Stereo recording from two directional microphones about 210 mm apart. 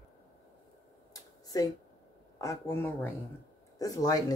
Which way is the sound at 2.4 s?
15° left (ahead or behind).